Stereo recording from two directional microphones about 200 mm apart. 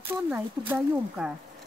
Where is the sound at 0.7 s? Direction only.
5° right (ahead or behind).